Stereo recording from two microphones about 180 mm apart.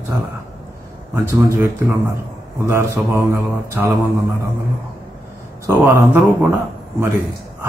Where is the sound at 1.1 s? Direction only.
15° right (ahead or behind).